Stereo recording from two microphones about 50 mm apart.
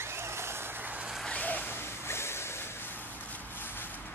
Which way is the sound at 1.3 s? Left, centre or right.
Left.